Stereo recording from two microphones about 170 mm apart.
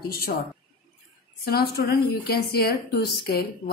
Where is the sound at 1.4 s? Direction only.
65° left (ahead or behind).